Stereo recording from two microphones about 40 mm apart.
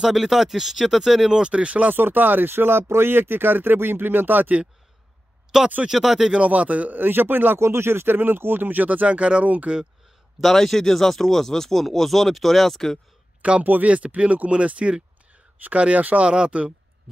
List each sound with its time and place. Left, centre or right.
0.0 s speech: centre
1.3 s speech: right
2.0 s speech: right
2.5 s speech: right
5.5 s speech: centre
6.3 s speech: right
7.0 s speech: right
10.4 s speech: centre
13.4 s speech: right
16.3 s speech: right